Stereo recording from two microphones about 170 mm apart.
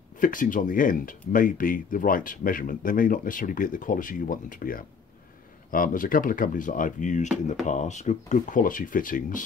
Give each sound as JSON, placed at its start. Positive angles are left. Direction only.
{"t": 0.2, "sound": "speech", "side_deg": 50}